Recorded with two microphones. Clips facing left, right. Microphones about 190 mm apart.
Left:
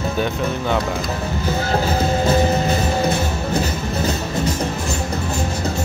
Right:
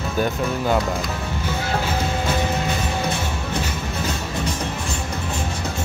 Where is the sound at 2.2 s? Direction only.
40° left (ahead or behind).